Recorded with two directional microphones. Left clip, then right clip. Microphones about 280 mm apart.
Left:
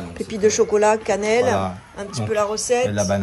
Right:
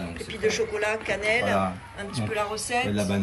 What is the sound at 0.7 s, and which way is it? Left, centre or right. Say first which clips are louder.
Speech: left 10 dB; left.